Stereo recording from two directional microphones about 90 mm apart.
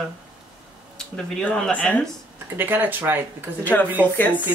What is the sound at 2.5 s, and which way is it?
Speech, 20° right (ahead or behind).